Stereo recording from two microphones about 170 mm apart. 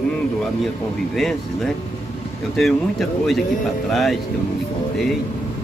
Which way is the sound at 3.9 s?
Centre (ahead or behind).